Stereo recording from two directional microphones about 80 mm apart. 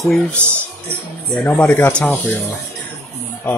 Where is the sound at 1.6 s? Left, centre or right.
Left.